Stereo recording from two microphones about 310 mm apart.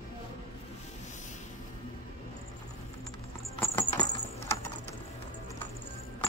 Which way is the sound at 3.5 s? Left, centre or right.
Centre.